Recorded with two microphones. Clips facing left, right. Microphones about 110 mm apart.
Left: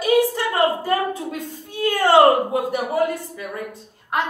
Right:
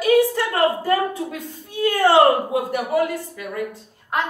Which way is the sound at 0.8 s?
20° left (ahead or behind).